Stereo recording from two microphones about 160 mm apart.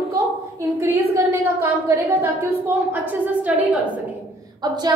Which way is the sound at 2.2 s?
15° right (ahead or behind).